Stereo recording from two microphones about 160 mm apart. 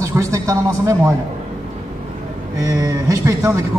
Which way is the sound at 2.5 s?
20° right (ahead or behind).